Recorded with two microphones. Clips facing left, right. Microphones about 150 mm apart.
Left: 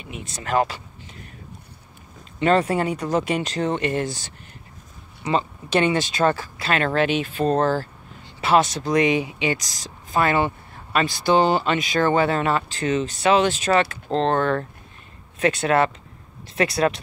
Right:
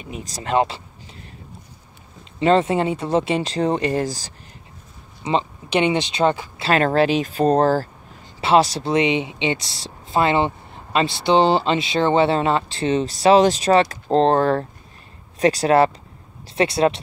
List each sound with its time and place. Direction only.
0.0 s speech: 35° right (ahead or behind)
2.4 s speech: 25° right (ahead or behind)
5.2 s speech: 15° right (ahead or behind)
6.6 s speech: 35° right (ahead or behind)